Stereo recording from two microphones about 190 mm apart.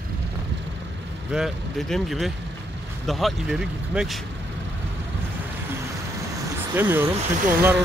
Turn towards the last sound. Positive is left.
turn(degrees=-10)  # may be behind; listen again after turning